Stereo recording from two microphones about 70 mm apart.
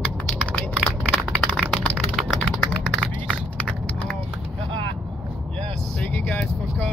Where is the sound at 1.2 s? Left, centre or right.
Centre.